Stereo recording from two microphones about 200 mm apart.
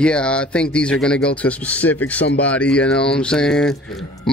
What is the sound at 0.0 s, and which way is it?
Speech, 5° left (ahead or behind).